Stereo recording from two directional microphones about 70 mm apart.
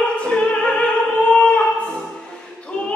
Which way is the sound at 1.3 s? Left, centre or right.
Centre.